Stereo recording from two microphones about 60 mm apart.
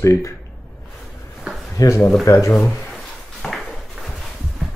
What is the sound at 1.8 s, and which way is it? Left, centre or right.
Speech, left.